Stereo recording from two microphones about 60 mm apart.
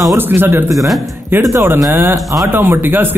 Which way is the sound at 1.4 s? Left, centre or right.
Right.